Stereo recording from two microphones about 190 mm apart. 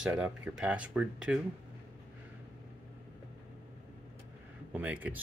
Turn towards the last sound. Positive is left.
turn(degrees=-10)  # may be behind; listen again after turning